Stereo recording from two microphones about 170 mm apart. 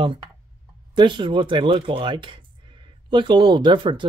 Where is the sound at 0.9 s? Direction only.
30° right (ahead or behind).